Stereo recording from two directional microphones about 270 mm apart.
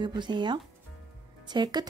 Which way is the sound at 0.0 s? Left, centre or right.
Centre.